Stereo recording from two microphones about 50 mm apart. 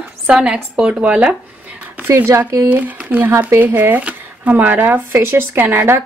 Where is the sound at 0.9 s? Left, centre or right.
Right.